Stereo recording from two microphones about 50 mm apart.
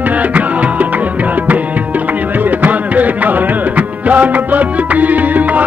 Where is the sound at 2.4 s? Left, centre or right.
Right.